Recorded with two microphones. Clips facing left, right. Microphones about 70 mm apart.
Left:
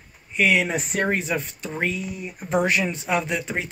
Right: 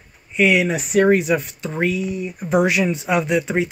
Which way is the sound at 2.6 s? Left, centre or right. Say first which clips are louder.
Right 4 dB; centre.